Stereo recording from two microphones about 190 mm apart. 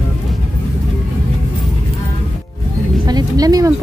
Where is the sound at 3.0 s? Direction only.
20° right (ahead or behind).